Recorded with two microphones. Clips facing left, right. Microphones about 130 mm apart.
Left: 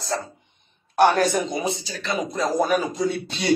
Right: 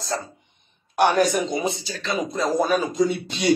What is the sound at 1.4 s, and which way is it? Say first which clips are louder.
Speech: right 2 dB; 25° right (ahead or behind).